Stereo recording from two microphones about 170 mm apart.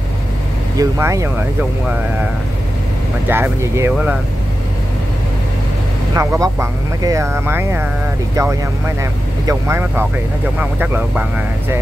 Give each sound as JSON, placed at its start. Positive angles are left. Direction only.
{"t": 0.7, "sound": "speech", "side_deg": -20}
{"t": 3.3, "sound": "speech", "side_deg": -15}
{"t": 6.1, "sound": "speech", "side_deg": -20}